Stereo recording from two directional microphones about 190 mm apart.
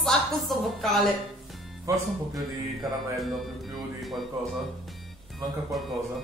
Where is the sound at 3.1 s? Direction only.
Centre (ahead or behind).